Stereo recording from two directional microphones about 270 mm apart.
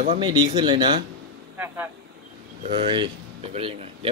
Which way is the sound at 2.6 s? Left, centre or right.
Centre.